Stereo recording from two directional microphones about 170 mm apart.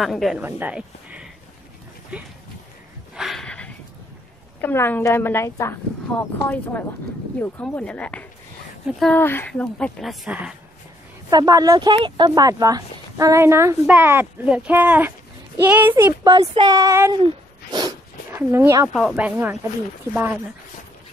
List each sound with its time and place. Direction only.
0.0 s a woman's voice: centre (ahead or behind)
0.4 s speech: 10° right (ahead or behind)
3.2 s a sound: centre (ahead or behind)
4.6 s a woman's voice: 10° left (ahead or behind); by 10.5 s 5° right (ahead or behind)
11.2 s speech: 20° right (ahead or behind)
16.3 s speech: 25° right (ahead or behind)
17.1 s a sound: 25° right (ahead or behind)
18.9 s speech: 5° right (ahead or behind)